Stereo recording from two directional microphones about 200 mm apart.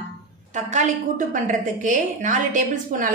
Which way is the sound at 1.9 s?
40° right (ahead or behind).